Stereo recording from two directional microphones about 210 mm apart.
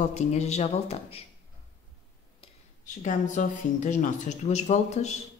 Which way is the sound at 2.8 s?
35° left (ahead or behind).